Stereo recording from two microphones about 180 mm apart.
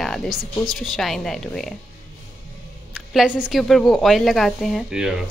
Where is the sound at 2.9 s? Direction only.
Centre (ahead or behind).